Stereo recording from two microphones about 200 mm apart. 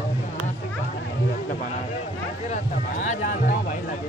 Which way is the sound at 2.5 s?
40° left (ahead or behind).